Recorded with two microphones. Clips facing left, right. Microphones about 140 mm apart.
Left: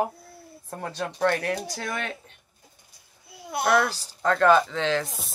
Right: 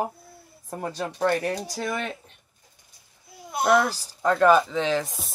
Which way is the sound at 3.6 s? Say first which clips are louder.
Right 2 dB; 20° right (ahead or behind).